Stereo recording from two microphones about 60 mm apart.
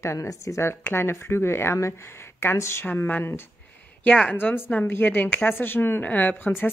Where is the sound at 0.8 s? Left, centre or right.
Left.